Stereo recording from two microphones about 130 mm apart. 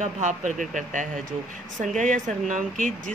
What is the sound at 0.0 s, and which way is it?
Speech, 70° right (ahead or behind).